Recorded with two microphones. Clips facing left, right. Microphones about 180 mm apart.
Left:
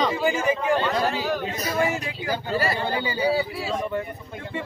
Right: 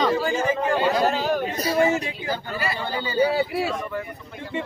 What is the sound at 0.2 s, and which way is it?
Speech, 15° left (ahead or behind).